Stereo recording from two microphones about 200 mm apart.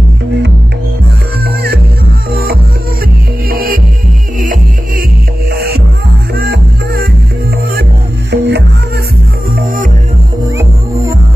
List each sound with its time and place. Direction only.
1.4 s music: 50° right (ahead or behind)
3.4 s music: 45° right (ahead or behind)
8.3 s music: 55° right (ahead or behind)